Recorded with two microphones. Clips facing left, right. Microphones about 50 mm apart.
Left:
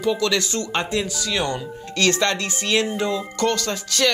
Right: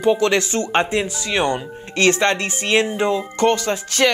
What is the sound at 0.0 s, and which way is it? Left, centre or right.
Speech, right.